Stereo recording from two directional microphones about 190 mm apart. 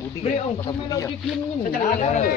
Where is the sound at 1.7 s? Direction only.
45° left (ahead or behind).